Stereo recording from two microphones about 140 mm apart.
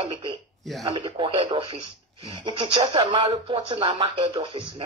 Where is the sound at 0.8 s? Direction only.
40° right (ahead or behind).